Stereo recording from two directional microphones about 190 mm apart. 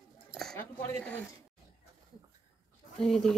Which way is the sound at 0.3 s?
Centre (ahead or behind).